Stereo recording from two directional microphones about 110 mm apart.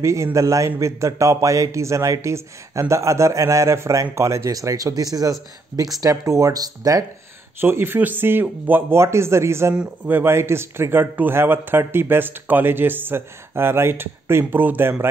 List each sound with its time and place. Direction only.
0.0 s a man's voice: 25° right (ahead or behind)
7.6 s a man's voice: 20° right (ahead or behind)